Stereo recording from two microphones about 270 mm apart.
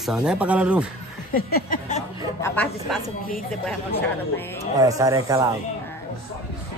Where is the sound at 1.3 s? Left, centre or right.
Left.